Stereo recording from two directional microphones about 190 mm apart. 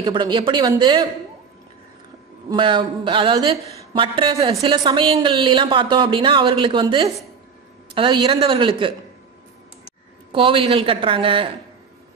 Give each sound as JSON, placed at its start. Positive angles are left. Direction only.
{"t": 0.0, "sound": "speech", "side_deg": -25}
{"t": 2.5, "sound": "speech", "side_deg": -25}
{"t": 10.3, "sound": "speech", "side_deg": -25}